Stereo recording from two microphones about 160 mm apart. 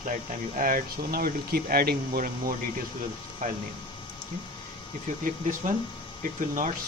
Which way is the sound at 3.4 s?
55° right (ahead or behind).